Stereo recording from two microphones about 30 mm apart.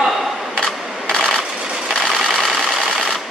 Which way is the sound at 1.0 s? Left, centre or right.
Left.